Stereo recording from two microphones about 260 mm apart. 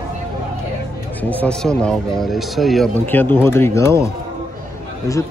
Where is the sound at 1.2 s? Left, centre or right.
Centre.